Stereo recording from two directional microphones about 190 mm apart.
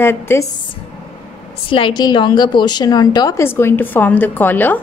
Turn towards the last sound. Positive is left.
turn(degrees=10)  # may be behind; listen again after turning